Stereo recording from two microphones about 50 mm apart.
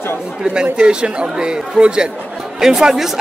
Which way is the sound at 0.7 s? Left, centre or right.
Centre.